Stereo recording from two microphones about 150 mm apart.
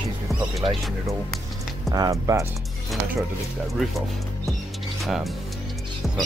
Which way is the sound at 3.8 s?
Centre (ahead or behind).